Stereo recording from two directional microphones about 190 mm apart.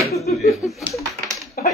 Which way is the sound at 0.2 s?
35° left (ahead or behind).